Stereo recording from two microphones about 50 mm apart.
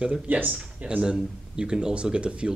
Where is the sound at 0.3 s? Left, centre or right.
Right.